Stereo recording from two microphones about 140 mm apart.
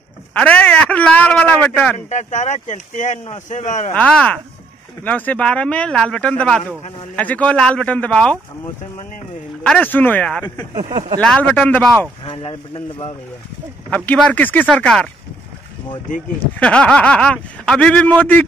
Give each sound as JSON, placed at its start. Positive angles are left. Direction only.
{"t": 0.3, "sound": "speech", "side_deg": 10}
{"t": 2.0, "sound": "speech", "side_deg": 55}
{"t": 3.9, "sound": "speech", "side_deg": 10}
{"t": 9.6, "sound": "speech", "side_deg": 10}
{"t": 10.9, "sound": "speech", "side_deg": -35}
{"t": 11.1, "sound": "speech", "side_deg": 10}
{"t": 12.3, "sound": "a man's voice", "side_deg": 40}
{"t": 13.8, "sound": "speech", "side_deg": 10}
{"t": 16.5, "sound": "speech", "side_deg": 10}